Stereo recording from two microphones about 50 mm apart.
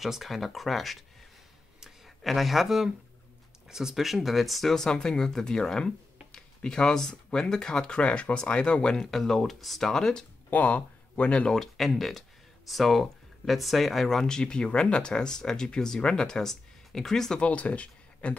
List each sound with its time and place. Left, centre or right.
0.0 s speech: centre
1.8 s a sound: centre
3.6 s speech: centre
10.5 s speech: left
11.5 s speech: centre
17.4 s speech: left